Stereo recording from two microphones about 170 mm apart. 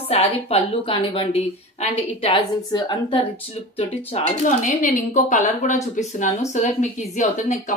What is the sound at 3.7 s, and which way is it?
A woman's voice, 40° left (ahead or behind).